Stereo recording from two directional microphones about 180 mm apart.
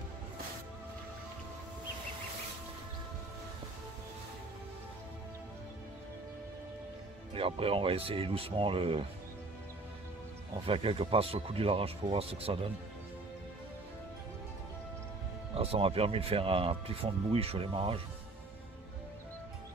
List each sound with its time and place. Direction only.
7.3 s speech: 30° right (ahead or behind)
10.7 s speech: 30° right (ahead or behind)
15.5 s speech: 35° right (ahead or behind)